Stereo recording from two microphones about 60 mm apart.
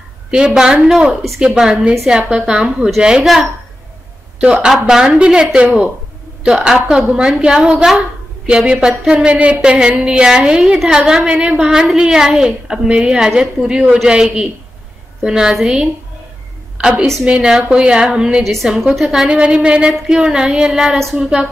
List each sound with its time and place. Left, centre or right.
0.6 s a woman's voice: centre
4.6 s a woman's voice: centre
8.5 s a woman's voice: centre
16.7 s a sound: centre
17.0 s a woman's voice: centre
17.3 s a woman's voice: centre
18.4 s a woman's voice: centre